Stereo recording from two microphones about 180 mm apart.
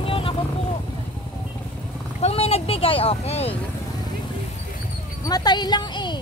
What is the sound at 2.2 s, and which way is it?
Vehicle, 35° left (ahead or behind).